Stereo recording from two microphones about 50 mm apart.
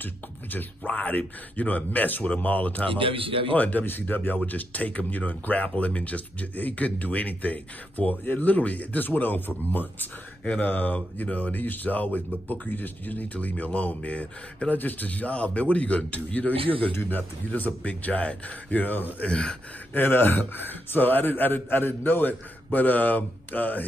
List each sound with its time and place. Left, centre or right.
0.0 s speech: left
19.2 s speech: left
19.9 s speech: left